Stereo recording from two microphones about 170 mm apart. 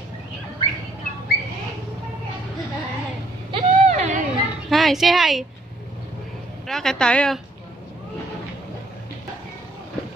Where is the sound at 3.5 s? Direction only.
40° right (ahead or behind).